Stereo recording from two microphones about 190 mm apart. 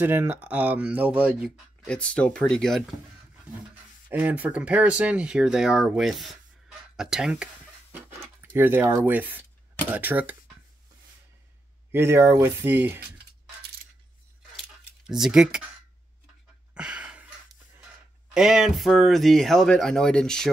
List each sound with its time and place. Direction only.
0.0 s speech: 10° right (ahead or behind)
1.9 s speech: 5° left (ahead or behind)
4.1 s speech: 10° right (ahead or behind)
11.9 s speech: 15° right (ahead or behind)
14.6 s keys jangling: centre (ahead or behind)
16.7 s a sound: 5° right (ahead or behind)
18.3 s speech: centre (ahead or behind)